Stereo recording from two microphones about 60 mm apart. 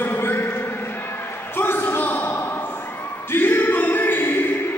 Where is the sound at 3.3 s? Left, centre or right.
Left.